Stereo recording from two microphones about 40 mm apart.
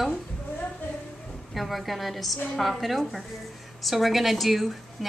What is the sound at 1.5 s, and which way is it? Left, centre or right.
A woman's voice, centre.